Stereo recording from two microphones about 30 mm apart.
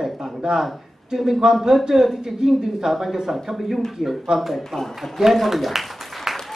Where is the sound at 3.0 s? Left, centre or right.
Centre.